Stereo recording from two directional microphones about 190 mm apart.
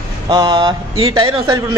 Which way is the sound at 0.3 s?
25° right (ahead or behind).